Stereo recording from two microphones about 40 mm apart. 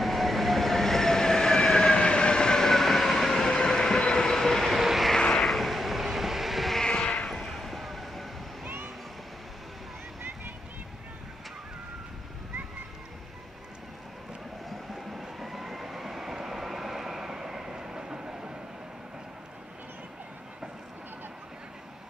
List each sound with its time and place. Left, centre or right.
0.0 s train: centre
4.4 s vehicle: centre
4.7 s vehicle: centre
5.1 s vehicle: centre
5.5 s vehicle: centre
6.8 s vehicle: left
7.2 s vehicle: centre
14.7 s vehicle: centre